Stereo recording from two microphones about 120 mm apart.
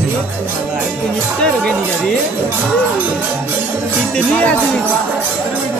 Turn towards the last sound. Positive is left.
turn(degrees=10)  # may be behind; listen again after turning